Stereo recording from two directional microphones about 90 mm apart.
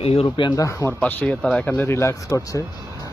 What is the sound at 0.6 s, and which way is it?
Speech, 35° left (ahead or behind).